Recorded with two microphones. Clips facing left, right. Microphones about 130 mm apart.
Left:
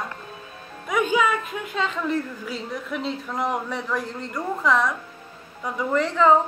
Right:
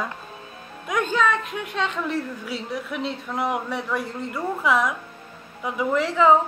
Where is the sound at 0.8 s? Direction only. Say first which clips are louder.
Left 1 dB; 5° left (ahead or behind).